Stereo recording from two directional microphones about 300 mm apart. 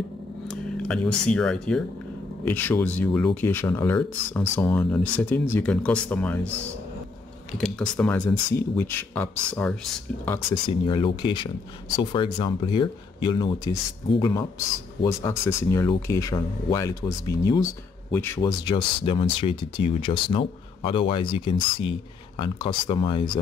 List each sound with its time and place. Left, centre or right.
0.5 s speech: centre
7.5 s speech: centre
15.0 s speech: centre